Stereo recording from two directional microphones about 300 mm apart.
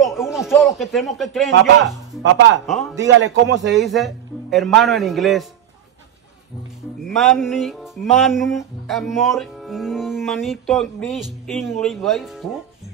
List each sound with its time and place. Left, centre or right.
0.0 s a sound: centre
0.5 s music: centre
2.6 s a man's voice: centre
3.0 s a man's voice: right
3.7 s music: centre
7.1 s music: centre